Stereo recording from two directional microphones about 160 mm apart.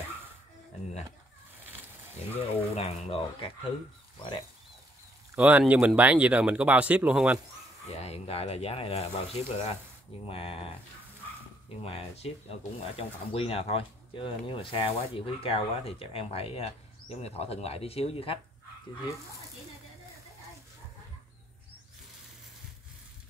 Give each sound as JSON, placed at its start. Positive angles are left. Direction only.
{"t": 2.3, "sound": "speech", "side_deg": 40}
{"t": 5.3, "sound": "speech", "side_deg": -5}
{"t": 7.9, "sound": "speech", "side_deg": 40}
{"t": 11.8, "sound": "speech", "side_deg": 40}